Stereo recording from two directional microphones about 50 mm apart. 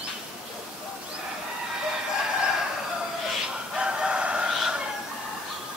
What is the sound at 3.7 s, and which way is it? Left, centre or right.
Chicken, centre.